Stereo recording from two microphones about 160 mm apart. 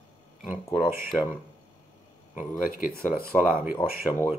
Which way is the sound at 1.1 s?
15° left (ahead or behind).